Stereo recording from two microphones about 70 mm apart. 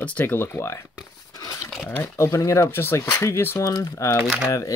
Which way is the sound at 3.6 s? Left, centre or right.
Left.